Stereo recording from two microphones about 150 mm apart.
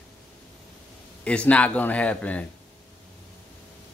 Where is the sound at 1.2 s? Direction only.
10° left (ahead or behind).